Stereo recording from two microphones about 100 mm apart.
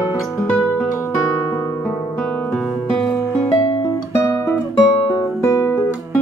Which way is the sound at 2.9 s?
5° left (ahead or behind).